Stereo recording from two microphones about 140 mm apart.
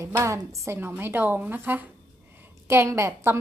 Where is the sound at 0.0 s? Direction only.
20° right (ahead or behind).